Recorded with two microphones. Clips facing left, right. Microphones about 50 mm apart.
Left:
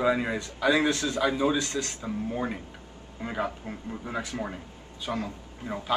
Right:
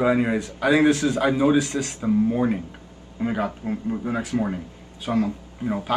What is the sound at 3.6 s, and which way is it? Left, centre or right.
Speech, centre.